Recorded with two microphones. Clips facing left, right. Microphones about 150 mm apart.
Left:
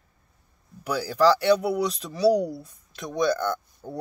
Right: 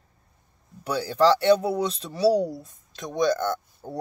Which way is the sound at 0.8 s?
25° right (ahead or behind).